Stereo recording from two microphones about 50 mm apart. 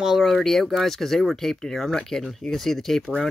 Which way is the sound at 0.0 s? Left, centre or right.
Centre.